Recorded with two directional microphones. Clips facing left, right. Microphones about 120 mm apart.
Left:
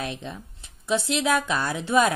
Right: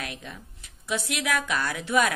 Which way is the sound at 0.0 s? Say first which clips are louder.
Left 5 dB; 25° left (ahead or behind).